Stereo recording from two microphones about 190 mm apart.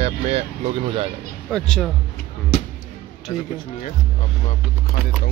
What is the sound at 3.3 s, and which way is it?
Speech, 20° left (ahead or behind).